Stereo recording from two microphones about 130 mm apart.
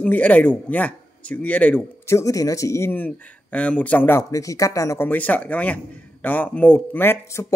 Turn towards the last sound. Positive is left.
turn(degrees=15)  # may be behind; listen again after turning